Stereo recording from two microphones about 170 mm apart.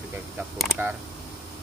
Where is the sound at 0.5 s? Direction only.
5° right (ahead or behind).